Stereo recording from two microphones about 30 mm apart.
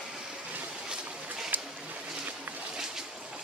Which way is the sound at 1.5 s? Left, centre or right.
Right.